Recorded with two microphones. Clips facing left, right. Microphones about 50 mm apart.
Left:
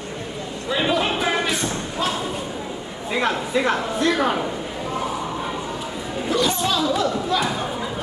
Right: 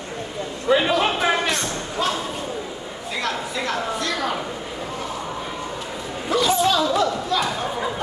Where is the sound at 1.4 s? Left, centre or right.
Centre.